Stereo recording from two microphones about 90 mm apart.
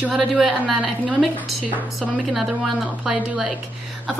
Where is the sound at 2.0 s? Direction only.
Centre (ahead or behind).